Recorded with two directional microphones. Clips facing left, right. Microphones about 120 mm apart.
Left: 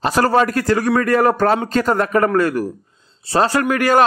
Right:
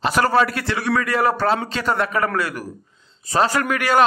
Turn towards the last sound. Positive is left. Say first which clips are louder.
# left 4 dB
turn(degrees=40)  # may be behind; listen again after turning